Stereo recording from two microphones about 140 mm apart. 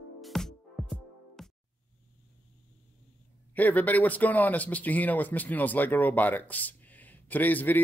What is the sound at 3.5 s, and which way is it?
Speech, 10° left (ahead or behind).